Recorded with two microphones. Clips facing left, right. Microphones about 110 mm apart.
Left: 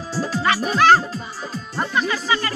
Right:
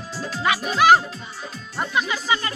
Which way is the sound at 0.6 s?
10° right (ahead or behind).